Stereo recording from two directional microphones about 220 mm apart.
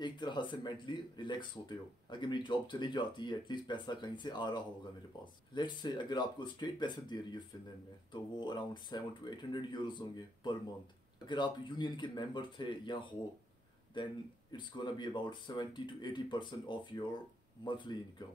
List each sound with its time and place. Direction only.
0.0 s speech: 20° left (ahead or behind)